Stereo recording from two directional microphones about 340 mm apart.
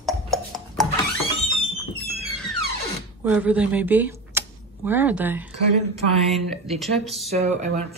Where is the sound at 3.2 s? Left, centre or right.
Centre.